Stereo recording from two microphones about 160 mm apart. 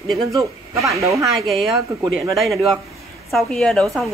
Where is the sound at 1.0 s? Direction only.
20° right (ahead or behind).